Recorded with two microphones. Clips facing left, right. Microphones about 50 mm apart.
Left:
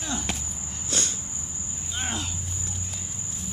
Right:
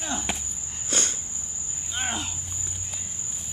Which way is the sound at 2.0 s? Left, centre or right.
Centre.